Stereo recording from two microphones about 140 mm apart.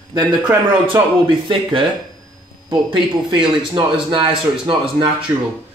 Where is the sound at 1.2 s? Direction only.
40° right (ahead or behind).